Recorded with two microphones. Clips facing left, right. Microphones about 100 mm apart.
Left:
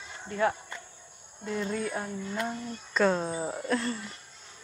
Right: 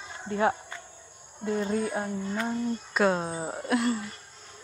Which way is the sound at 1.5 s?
30° right (ahead or behind).